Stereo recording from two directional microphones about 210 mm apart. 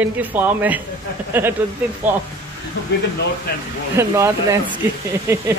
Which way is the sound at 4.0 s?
15° right (ahead or behind).